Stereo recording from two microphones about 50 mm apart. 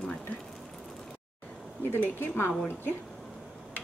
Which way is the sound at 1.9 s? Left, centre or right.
Left.